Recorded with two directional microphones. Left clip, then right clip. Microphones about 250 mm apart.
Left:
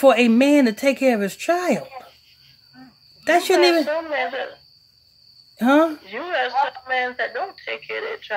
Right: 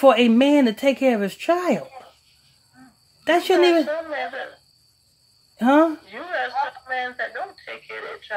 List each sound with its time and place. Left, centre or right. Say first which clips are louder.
0.0 s speech: even; centre
3.3 s speech: left 1 dB; centre
3.8 s speech: left 3 dB; left
5.6 s speech: even; centre
6.0 s speech: left 3 dB; left